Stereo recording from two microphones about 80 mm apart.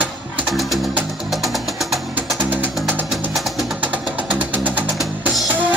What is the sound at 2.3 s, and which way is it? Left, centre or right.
Music, right.